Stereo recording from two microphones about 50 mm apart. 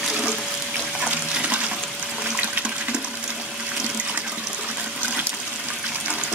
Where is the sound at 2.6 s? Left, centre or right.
Right.